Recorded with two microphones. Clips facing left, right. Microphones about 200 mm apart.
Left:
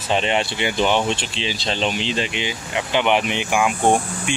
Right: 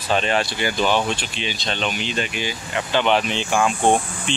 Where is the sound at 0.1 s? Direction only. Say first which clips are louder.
Even; 20° left (ahead or behind).